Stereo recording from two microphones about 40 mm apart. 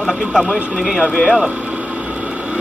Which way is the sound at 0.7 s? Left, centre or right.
Centre.